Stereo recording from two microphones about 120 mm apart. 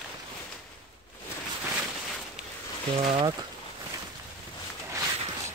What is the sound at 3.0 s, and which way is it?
Speech, 45° right (ahead or behind).